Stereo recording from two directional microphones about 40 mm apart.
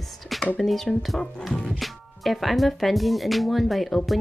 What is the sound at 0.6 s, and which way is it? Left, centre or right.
Speech, centre.